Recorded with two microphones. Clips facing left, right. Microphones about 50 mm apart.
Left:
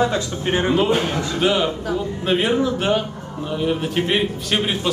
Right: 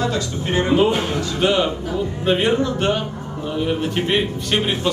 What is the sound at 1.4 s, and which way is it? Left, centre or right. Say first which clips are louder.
A man's voice: right 1 dB; centre.